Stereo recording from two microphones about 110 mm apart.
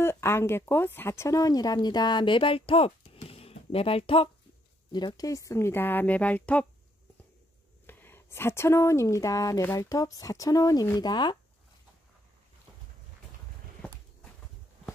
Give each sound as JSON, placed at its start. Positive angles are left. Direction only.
{"t": 0.0, "sound": "speech", "side_deg": 25}
{"t": 4.9, "sound": "speech", "side_deg": 35}
{"t": 7.8, "sound": "speech", "side_deg": 20}